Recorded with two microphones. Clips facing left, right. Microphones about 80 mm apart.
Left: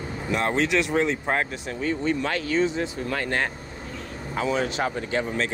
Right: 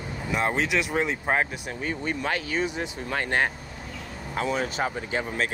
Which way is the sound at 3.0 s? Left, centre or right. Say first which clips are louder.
Right 4 dB; right.